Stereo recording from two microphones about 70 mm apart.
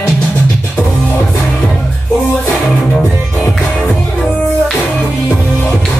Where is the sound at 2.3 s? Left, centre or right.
Centre.